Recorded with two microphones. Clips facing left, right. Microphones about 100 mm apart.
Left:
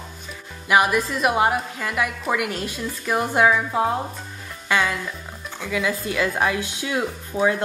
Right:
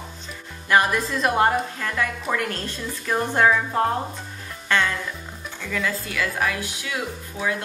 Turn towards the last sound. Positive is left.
turn(degrees=30)  # may be behind; listen again after turning